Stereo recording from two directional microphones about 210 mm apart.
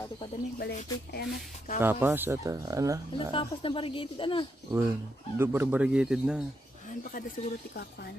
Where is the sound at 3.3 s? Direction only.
25° left (ahead or behind).